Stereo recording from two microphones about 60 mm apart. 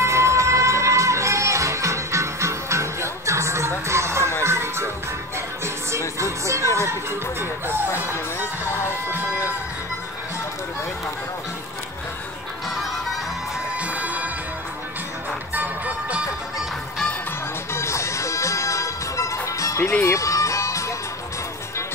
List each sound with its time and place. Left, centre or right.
0.0 s music: right
5.9 s music: right
13.7 s bagpipes: right
15.5 s music: right
17.7 s music: left
19.8 s speech: left
20.2 s music: left